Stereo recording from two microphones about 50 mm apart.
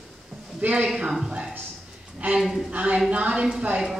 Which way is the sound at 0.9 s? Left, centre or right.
Centre.